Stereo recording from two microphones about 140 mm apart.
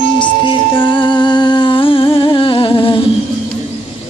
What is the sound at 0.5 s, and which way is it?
Music, 35° left (ahead or behind).